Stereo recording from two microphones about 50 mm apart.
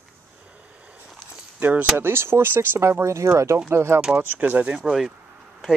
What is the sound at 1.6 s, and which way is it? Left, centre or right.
Speech, right.